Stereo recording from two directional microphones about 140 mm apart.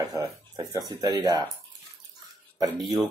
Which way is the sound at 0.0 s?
30° right (ahead or behind).